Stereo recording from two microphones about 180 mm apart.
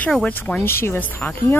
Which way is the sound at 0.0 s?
5° left (ahead or behind).